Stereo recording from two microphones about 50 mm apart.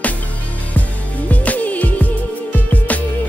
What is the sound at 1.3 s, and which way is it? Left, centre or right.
Music, left.